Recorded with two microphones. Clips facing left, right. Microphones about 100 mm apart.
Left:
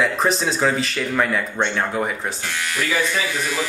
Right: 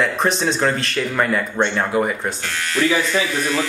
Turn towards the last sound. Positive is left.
turn(degrees=10)  # may be behind; listen again after turning